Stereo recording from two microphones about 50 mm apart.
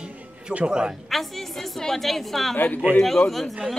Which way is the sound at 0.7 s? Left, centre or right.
Centre.